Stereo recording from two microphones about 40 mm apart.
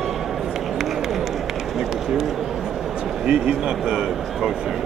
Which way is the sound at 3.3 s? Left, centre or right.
Right.